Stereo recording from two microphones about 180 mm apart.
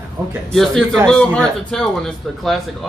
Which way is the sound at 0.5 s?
Centre (ahead or behind).